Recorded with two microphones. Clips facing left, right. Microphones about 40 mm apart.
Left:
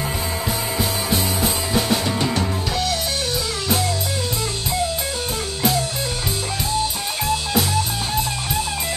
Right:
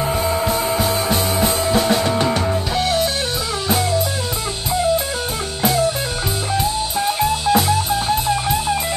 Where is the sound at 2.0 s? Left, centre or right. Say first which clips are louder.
Right 4 dB; centre.